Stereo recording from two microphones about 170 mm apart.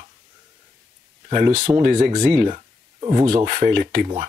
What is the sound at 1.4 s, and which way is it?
Speech, 45° right (ahead or behind).